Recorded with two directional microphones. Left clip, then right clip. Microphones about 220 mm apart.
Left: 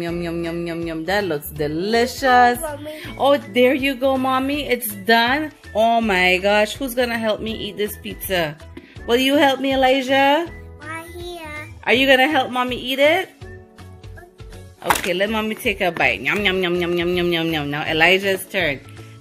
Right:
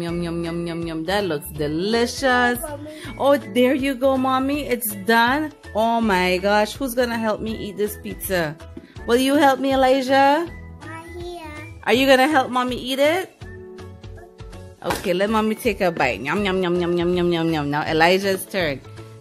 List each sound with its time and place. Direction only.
0.0 s speech: centre (ahead or behind)
7.4 s speech: 40° right (ahead or behind)
9.0 s speech: 5° right (ahead or behind)
10.9 s child singing: 5° right (ahead or behind)
12.9 s speech: 5° right (ahead or behind)
14.8 s speech: 10° right (ahead or behind)